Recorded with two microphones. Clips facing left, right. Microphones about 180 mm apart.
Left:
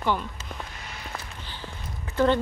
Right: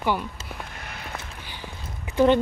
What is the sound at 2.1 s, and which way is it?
Speech, 15° right (ahead or behind).